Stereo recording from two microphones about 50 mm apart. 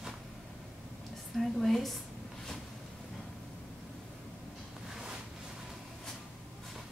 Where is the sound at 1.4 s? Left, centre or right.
Centre.